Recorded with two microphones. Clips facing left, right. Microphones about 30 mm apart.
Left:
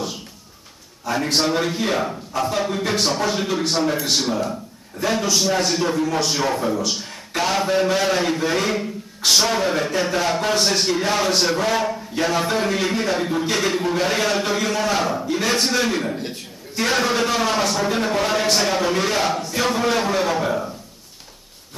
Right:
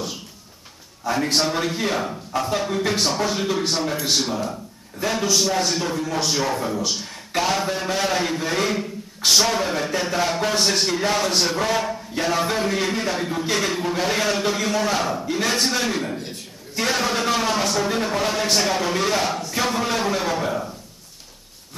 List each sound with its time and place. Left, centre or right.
1.0 s a man's voice: centre